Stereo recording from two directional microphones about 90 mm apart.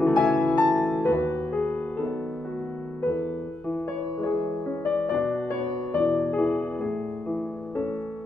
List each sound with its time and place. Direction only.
0.0 s music: 5° left (ahead or behind)
1.0 s music: 20° left (ahead or behind)
4.3 s music: 20° left (ahead or behind)